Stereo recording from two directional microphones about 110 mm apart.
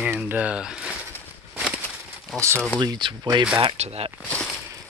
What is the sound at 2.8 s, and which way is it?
Speech, 45° right (ahead or behind).